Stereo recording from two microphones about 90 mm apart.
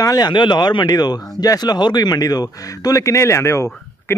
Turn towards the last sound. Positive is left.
turn(degrees=30)  # may be behind; listen again after turning